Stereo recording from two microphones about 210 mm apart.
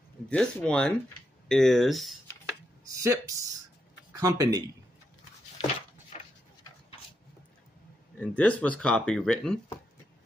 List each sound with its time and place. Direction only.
0.3 s speech: 5° left (ahead or behind)
2.9 s speech: 15° right (ahead or behind)
6.1 s a sound: 30° left (ahead or behind)
8.2 s speech: 5° left (ahead or behind)